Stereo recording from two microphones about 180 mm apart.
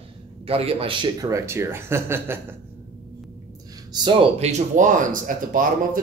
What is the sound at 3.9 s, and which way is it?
Speech, 25° right (ahead or behind).